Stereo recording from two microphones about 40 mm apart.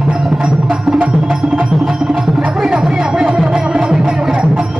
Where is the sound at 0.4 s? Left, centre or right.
Right.